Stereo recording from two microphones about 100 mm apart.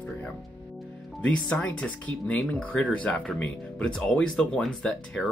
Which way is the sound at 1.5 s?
15° left (ahead or behind).